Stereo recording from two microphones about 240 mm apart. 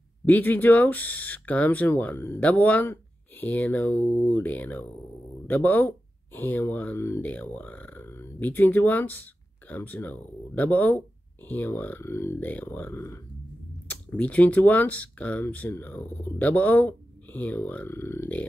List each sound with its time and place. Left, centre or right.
0.2 s speech: centre